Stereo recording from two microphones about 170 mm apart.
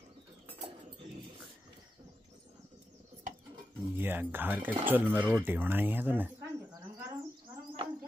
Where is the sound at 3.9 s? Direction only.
10° right (ahead or behind).